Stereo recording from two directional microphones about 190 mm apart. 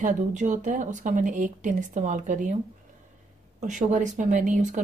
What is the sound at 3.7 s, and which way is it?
Speech, 40° right (ahead or behind).